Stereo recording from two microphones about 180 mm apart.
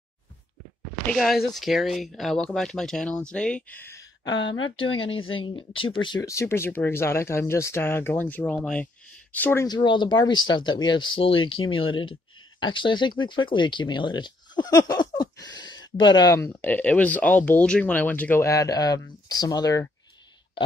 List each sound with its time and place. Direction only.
1.0 s speech: centre (ahead or behind)
9.7 s speech: 25° left (ahead or behind)